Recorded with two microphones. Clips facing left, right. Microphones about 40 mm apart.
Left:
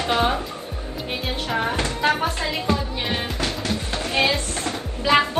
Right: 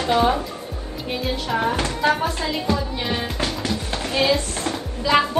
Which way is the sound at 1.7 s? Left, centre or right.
Left.